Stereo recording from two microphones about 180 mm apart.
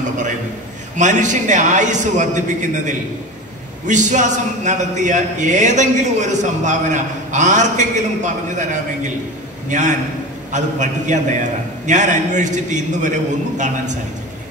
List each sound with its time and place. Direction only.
0.9 s a man's voice: 40° right (ahead or behind)